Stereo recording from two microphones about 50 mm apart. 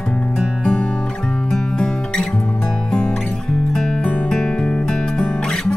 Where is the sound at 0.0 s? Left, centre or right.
Centre.